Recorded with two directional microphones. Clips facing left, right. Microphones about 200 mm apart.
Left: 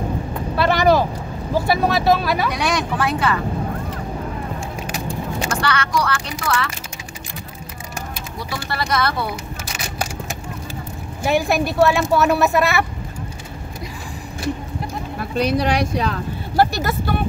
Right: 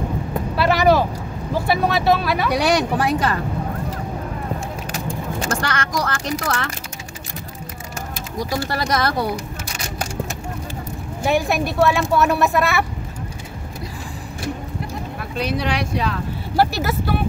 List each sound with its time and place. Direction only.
0.6 s a woman's voice: 5° right (ahead or behind)
2.5 s speech: 35° right (ahead or behind)
5.0 s speech: 45° right (ahead or behind)
8.4 s speech: 40° right (ahead or behind)
11.2 s a woman's voice: centre (ahead or behind)
15.3 s speech: 40° left (ahead or behind)
16.5 s a woman's voice: 5° right (ahead or behind)